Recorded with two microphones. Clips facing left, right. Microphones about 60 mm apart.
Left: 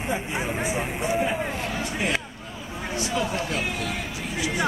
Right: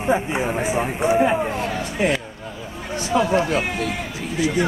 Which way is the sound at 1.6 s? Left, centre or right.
Right.